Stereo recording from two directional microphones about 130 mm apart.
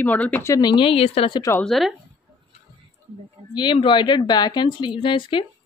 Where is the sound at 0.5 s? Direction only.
35° left (ahead or behind).